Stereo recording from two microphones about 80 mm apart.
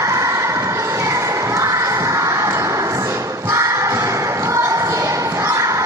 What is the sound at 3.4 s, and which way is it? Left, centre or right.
Thump, right.